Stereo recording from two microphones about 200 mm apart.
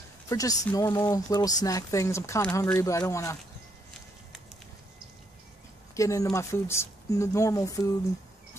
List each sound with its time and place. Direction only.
0.3 s speech: 15° left (ahead or behind)
5.9 s speech: 15° left (ahead or behind)